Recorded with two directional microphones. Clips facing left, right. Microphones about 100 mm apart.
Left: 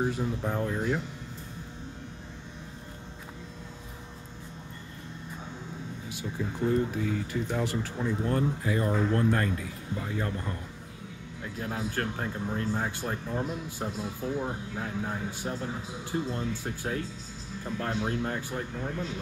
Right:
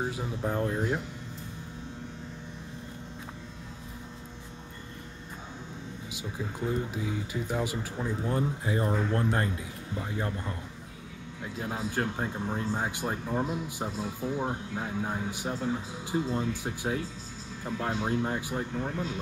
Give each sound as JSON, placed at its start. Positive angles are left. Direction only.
{"t": 0.0, "sound": "speech", "side_deg": -5}
{"t": 6.4, "sound": "speech", "side_deg": -10}
{"t": 8.6, "sound": "speech", "side_deg": -25}
{"t": 11.6, "sound": "speech", "side_deg": -15}
{"t": 13.8, "sound": "speech", "side_deg": 0}
{"t": 14.8, "sound": "speech", "side_deg": -15}